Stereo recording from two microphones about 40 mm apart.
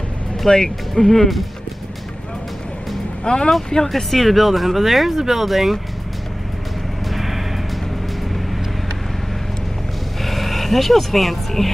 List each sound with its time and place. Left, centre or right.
0.5 s speech: centre
3.3 s speech: left
3.7 s speech: centre
7.1 s music: centre
10.2 s speech: centre